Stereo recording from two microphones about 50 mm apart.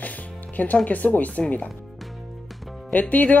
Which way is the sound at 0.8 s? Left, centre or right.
Left.